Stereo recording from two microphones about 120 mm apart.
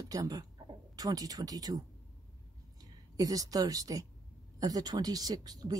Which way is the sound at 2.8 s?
30° right (ahead or behind).